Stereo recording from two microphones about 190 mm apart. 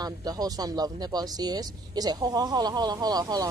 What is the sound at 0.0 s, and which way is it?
Speech, 20° right (ahead or behind).